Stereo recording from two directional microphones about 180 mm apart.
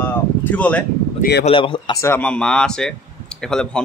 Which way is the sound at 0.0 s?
10° left (ahead or behind).